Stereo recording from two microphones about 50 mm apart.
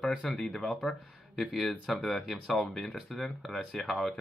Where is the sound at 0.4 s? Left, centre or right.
Centre.